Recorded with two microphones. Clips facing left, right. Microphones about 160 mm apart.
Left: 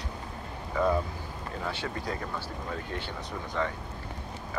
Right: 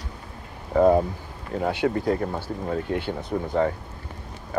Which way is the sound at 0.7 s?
50° right (ahead or behind).